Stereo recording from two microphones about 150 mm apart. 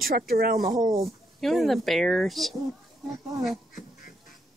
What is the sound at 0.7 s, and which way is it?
Speech, 25° right (ahead or behind).